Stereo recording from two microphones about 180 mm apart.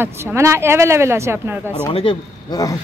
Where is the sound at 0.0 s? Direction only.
15° right (ahead or behind).